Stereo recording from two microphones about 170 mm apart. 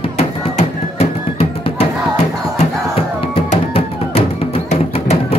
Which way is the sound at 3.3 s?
35° left (ahead or behind).